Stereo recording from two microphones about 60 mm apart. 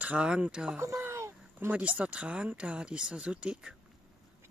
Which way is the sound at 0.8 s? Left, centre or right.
Right.